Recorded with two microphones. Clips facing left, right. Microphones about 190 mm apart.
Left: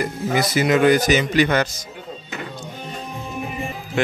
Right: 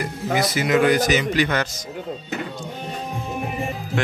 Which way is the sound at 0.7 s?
25° left (ahead or behind).